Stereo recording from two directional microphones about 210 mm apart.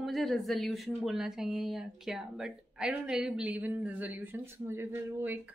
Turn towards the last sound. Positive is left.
turn(degrees=-10)  # may be behind; listen again after turning